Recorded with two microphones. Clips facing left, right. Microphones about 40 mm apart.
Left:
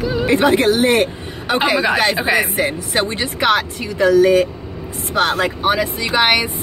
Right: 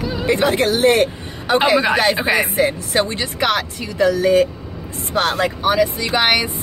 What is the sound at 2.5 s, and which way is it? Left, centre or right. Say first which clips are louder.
Speech: right 1 dB; centre.